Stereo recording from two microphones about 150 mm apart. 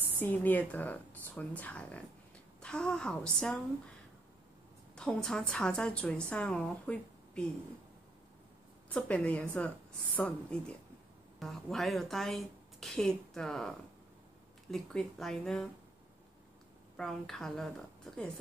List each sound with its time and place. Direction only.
0.2 s a woman's voice: 10° left (ahead or behind)
4.9 s a woman's voice: 5° left (ahead or behind)
8.8 s a woman's voice: 10° left (ahead or behind)
16.9 s a woman's voice: centre (ahead or behind)